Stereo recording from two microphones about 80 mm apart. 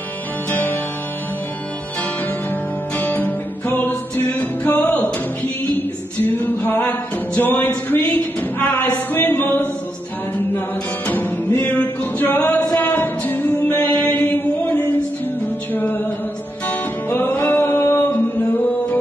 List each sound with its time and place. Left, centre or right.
0.5 s music: left
3.0 s music: left
6.2 s music: left
7.3 s a sound: left
11.1 s music: left